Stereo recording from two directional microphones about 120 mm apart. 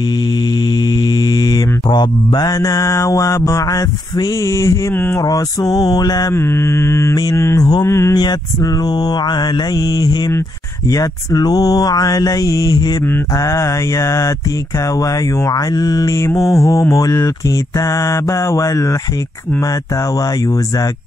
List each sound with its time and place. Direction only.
1.0 s mantra: 35° left (ahead or behind); by 5.2 s 20° left (ahead or behind)
5.2 s mantra: 30° left (ahead or behind)
6.3 s mantra: 20° left (ahead or behind)